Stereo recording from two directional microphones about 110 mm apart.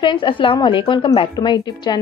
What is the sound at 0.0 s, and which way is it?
A woman's voice, 50° left (ahead or behind).